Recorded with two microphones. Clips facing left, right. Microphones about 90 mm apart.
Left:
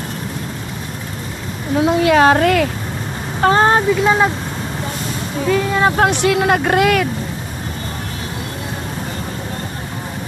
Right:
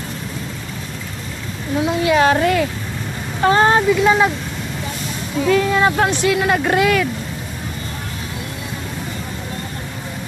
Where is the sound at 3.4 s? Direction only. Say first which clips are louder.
Left 1 dB; 30° left (ahead or behind).